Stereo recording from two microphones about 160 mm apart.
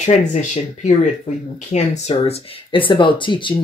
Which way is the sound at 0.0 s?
45° left (ahead or behind).